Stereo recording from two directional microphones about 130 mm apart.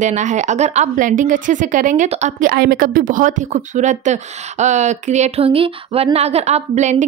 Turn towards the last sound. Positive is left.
turn(degrees=-65)  # may be behind; listen again after turning